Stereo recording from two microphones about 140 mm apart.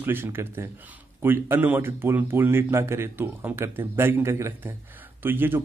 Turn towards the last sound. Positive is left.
turn(degrees=-15)  # may be behind; listen again after turning